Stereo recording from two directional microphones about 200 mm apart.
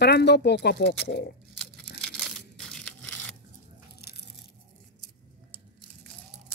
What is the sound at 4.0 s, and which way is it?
Crunch, 55° left (ahead or behind).